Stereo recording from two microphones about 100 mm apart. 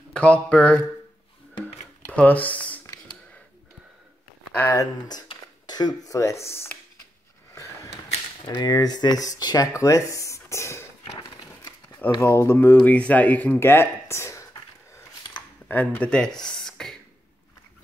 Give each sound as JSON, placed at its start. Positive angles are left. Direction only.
{"t": 0.1, "sound": "speech", "side_deg": 10}
{"t": 2.0, "sound": "speech", "side_deg": 15}
{"t": 4.6, "sound": "speech", "side_deg": 40}
{"t": 6.1, "sound": "speech", "side_deg": 30}
{"t": 7.5, "sound": "a sound", "side_deg": 30}
{"t": 8.5, "sound": "speech", "side_deg": 40}
{"t": 11.2, "sound": "a sound", "side_deg": 45}
{"t": 12.2, "sound": "speech", "side_deg": 25}
{"t": 15.7, "sound": "speech", "side_deg": 15}